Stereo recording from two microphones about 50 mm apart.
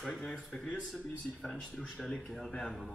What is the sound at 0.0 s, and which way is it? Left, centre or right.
Speech, centre.